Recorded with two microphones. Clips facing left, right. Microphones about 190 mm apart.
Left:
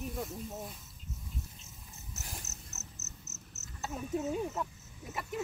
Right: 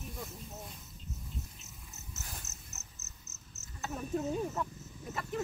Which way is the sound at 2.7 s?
40° left (ahead or behind).